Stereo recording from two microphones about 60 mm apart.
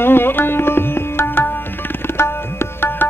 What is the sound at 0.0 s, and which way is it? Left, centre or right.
Tabla, left.